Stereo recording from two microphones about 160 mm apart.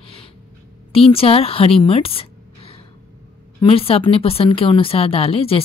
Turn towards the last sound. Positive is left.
turn(degrees=35)  # may be behind; listen again after turning